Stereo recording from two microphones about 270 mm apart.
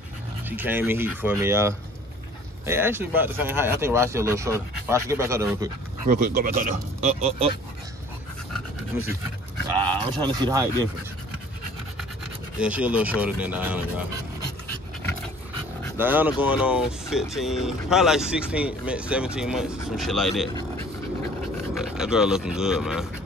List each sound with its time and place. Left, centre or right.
0.5 s speech: centre
6.0 s speech: right
10.0 s speech: centre
12.5 s speech: centre
16.0 s speech: centre
21.7 s speech: centre